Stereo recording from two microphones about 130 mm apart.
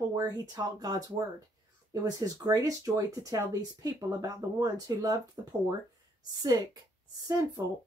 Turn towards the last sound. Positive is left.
turn(degrees=-25)  # may be behind; listen again after turning